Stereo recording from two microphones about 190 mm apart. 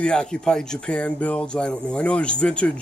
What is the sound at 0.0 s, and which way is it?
Speech, 5° left (ahead or behind).